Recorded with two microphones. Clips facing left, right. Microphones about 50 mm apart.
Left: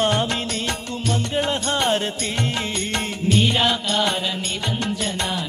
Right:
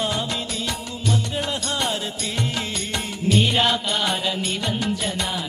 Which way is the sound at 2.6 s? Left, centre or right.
Left.